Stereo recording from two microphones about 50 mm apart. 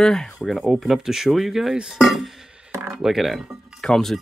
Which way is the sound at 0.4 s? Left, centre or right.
Centre.